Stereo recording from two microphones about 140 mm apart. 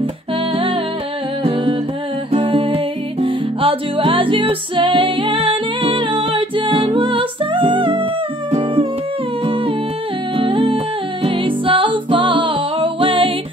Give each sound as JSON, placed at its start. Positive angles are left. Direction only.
{"t": 1.4, "sound": "music", "side_deg": -40}
{"t": 10.3, "sound": "music", "side_deg": -40}